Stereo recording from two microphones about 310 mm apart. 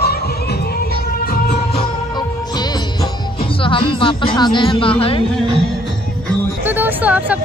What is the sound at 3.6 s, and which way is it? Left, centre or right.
Speech, centre.